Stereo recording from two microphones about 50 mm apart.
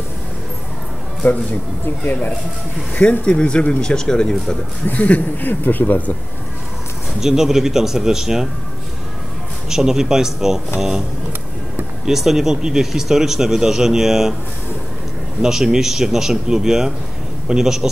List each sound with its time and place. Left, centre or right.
1.2 s speech: left
2.9 s speech: left
4.8 s speech: left
7.2 s speech: centre
9.7 s speech: centre
12.1 s speech: centre
15.4 s speech: centre